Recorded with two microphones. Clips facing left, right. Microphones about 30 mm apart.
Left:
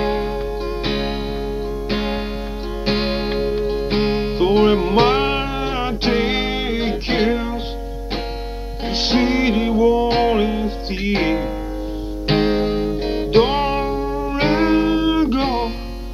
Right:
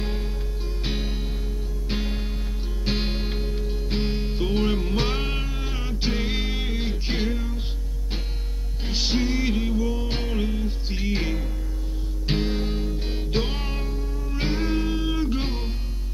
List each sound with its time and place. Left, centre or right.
0.0 s music: left
8.8 s music: left